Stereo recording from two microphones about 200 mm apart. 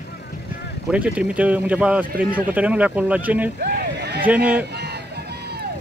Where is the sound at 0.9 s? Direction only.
5° right (ahead or behind).